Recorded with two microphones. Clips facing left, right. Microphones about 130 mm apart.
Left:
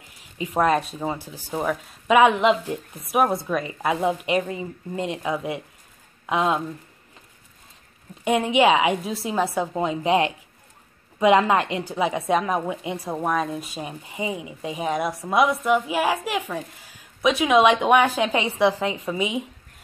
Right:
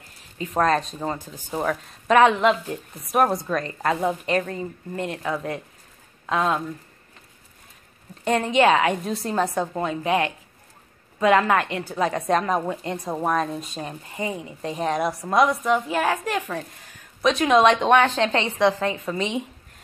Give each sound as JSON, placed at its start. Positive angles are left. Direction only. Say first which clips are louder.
{"t": 0.2, "sound": "a woman's voice", "louder": "left 1 dB", "side_deg": 10}
{"t": 8.2, "sound": "a woman's voice", "louder": "even", "side_deg": 10}